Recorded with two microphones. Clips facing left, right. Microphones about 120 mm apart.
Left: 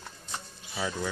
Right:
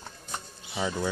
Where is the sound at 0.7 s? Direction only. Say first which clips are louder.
Right 3 dB; 15° right (ahead or behind).